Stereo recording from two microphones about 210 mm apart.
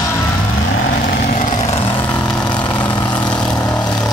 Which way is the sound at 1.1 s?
50° left (ahead or behind).